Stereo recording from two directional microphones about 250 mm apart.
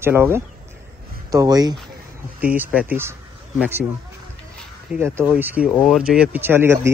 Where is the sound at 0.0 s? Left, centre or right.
Centre.